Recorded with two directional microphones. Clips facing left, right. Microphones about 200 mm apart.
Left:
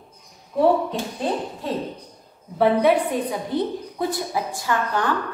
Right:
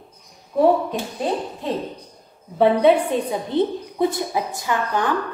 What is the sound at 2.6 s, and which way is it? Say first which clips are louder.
A woman's voice: right 2 dB; 25° right (ahead or behind).